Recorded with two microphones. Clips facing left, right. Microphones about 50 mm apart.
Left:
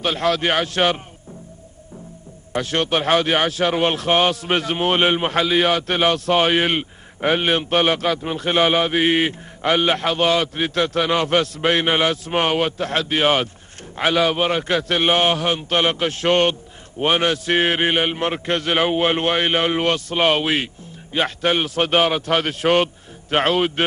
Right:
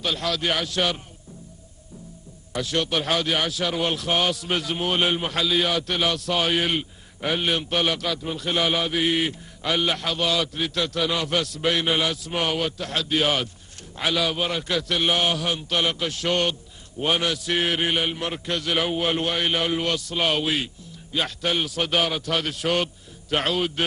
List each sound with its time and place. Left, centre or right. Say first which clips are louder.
0.0 s a man's voice: left 6 dB; left
2.5 s a man's voice: left 4 dB; left